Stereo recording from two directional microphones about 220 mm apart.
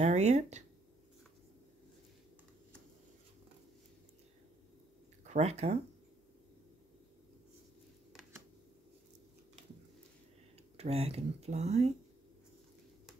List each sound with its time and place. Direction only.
0.0 s speech: 30° right (ahead or behind)
5.2 s speech: 30° right (ahead or behind)
10.8 s speech: 30° right (ahead or behind)